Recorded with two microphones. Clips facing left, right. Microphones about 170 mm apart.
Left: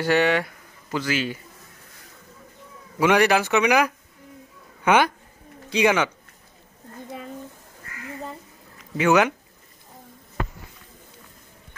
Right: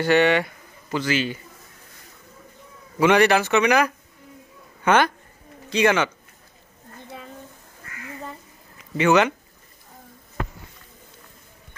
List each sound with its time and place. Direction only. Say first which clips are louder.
0.0 s speech: right 2 dB; 5° left (ahead or behind)
3.0 s speech: right 1 dB; 10° left (ahead or behind)
8.9 s speech: right 1 dB; 5° left (ahead or behind)